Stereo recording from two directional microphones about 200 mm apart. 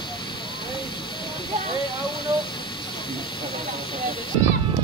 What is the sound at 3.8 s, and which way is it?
Snake, 25° left (ahead or behind).